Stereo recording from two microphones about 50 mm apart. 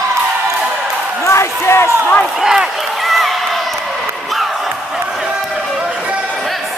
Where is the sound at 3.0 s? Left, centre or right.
Centre.